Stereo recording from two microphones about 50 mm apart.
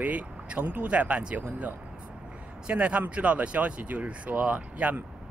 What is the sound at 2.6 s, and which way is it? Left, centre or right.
Speech, right.